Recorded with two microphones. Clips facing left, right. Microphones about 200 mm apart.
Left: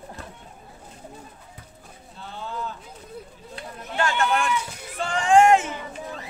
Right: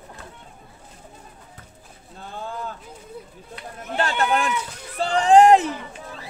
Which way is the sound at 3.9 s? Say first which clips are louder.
Right 1 dB; 35° right (ahead or behind).